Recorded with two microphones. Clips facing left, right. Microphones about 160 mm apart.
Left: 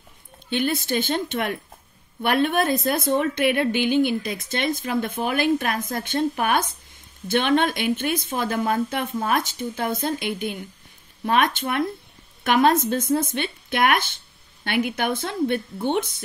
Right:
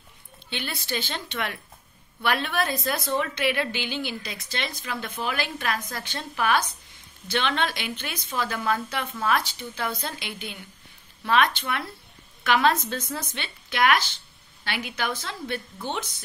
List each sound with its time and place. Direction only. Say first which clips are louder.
0.5 s speech: left 9 dB; 45° left (ahead or behind)